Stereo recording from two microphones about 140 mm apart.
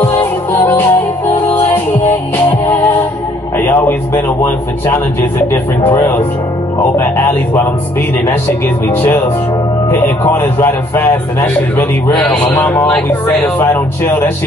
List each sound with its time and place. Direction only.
0.0 s music: 15° left (ahead or behind)
2.3 s music: 10° left (ahead or behind)
3.5 s a sound: 15° left (ahead or behind)
5.5 s a man's voice: 15° left (ahead or behind)
12.1 s a man's voice: 5° left (ahead or behind)